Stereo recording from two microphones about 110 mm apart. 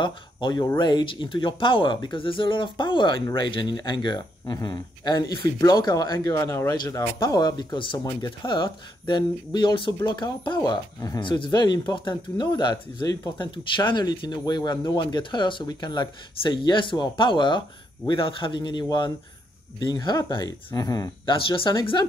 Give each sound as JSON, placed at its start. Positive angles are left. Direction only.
{"t": 0.0, "sound": "speech", "side_deg": 45}
{"t": 21.3, "sound": "speech", "side_deg": 50}